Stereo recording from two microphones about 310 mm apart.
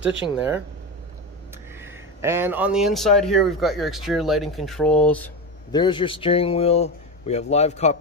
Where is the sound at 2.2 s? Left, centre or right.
Centre.